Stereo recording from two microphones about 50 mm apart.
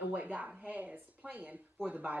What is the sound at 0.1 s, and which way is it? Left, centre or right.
A woman's voice, right.